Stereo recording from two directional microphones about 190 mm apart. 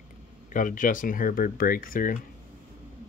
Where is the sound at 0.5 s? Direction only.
45° left (ahead or behind).